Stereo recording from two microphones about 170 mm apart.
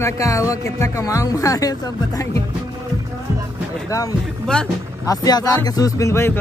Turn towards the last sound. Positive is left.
turn(degrees=15)  # may be behind; listen again after turning